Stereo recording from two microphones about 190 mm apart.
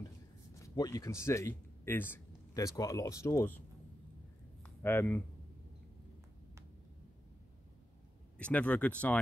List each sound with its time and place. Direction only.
0.6 s speech: 15° left (ahead or behind)
4.6 s speech: 10° left (ahead or behind)
8.4 s speech: 5° left (ahead or behind)